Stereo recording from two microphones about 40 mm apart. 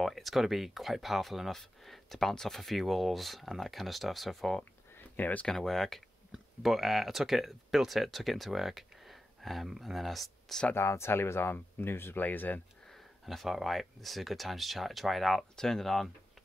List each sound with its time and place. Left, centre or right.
0.0 s speech: centre
1.5 s speech: centre
4.9 s a sound: left
5.5 s speech: centre
6.6 s speech: centre
10.7 s speech: left
12.2 s speech: left
12.8 s speech: centre
15.5 s speech: centre